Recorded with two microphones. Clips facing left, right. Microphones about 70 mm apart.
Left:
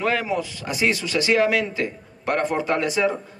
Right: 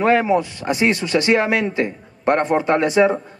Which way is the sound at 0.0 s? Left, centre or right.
Right.